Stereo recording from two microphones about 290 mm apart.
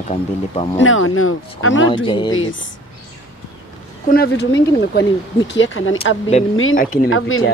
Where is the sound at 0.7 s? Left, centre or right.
Left.